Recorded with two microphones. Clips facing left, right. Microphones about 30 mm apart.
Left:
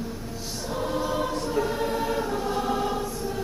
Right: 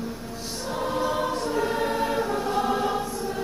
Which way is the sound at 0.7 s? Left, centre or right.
Centre.